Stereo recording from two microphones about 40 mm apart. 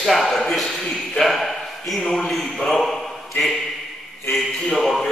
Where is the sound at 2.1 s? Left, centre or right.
Left.